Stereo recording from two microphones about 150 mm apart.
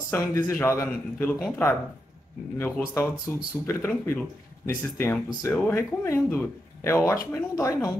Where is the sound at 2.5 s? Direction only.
15° left (ahead or behind).